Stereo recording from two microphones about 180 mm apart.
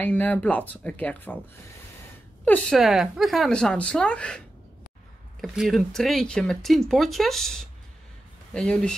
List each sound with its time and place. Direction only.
0.0 s speech: 10° left (ahead or behind)
2.4 s speech: 5° left (ahead or behind)
5.4 s speech: centre (ahead or behind)